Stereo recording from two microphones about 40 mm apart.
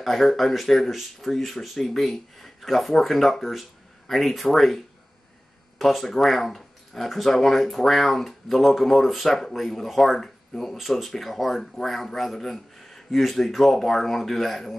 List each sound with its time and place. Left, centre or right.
0.0 s speech: centre